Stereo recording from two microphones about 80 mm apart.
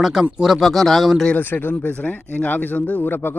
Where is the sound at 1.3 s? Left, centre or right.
Left.